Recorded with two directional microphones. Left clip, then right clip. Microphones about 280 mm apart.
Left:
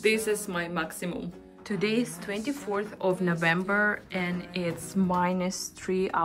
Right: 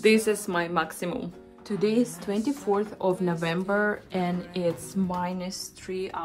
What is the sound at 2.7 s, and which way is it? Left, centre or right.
Speech, centre.